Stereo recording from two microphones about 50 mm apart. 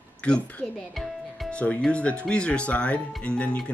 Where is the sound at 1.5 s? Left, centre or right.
Left.